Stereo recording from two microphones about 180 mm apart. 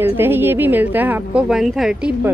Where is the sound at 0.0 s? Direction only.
10° right (ahead or behind).